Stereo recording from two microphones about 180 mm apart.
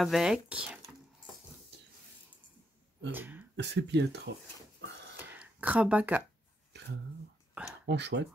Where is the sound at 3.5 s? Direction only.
70° right (ahead or behind).